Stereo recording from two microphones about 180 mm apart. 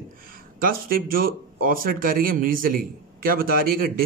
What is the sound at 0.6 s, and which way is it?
A man's voice, 50° right (ahead or behind).